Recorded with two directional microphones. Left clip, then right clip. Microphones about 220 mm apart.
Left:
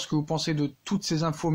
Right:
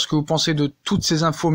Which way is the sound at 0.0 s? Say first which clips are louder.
Right 9 dB; 30° right (ahead or behind).